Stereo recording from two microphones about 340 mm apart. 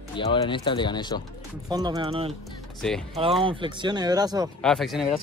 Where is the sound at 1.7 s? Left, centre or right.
Centre.